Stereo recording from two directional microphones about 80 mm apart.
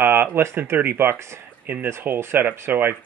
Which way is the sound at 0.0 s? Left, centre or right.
Right.